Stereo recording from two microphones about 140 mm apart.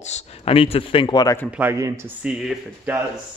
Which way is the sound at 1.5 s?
10° right (ahead or behind).